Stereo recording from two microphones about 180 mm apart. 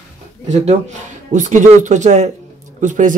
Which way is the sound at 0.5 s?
40° right (ahead or behind).